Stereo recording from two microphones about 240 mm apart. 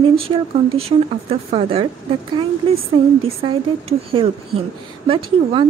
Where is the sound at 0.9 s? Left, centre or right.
Right.